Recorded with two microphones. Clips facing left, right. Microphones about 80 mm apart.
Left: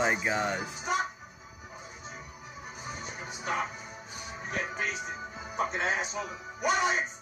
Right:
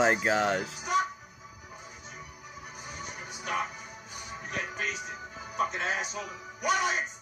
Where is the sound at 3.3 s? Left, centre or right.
Left.